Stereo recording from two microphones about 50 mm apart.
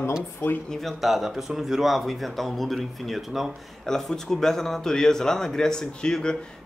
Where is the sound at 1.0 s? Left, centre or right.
Centre.